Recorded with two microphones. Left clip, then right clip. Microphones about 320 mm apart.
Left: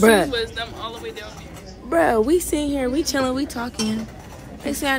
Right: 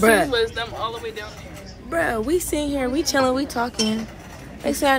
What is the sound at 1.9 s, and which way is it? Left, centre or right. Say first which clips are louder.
A woman's voice: left 4 dB; centre.